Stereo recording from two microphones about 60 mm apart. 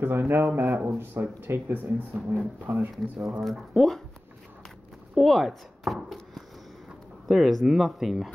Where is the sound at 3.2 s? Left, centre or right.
Centre.